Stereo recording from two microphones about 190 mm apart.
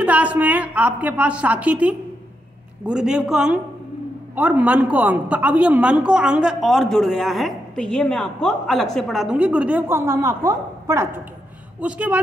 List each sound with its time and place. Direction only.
0.0 s a woman's voice: 5° right (ahead or behind)